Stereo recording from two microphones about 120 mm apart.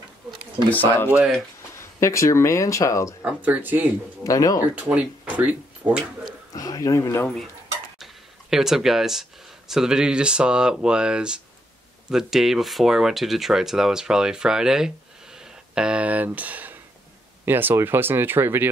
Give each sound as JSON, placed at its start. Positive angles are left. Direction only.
{"t": 1.1, "sound": "speech", "side_deg": -5}
{"t": 2.0, "sound": "speech", "side_deg": 25}
{"t": 3.2, "sound": "speech", "side_deg": -10}
{"t": 4.2, "sound": "speech", "side_deg": 30}
{"t": 4.7, "sound": "speech", "side_deg": -10}
{"t": 6.5, "sound": "speech", "side_deg": 30}
{"t": 8.0, "sound": "speech", "side_deg": -5}
{"t": 15.3, "sound": "a sound", "side_deg": -5}
{"t": 17.5, "sound": "speech", "side_deg": -15}